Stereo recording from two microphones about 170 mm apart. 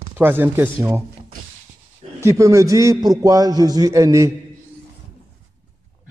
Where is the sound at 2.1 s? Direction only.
15° right (ahead or behind).